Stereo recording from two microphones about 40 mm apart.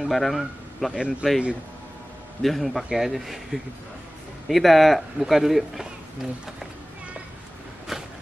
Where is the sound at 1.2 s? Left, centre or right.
Right.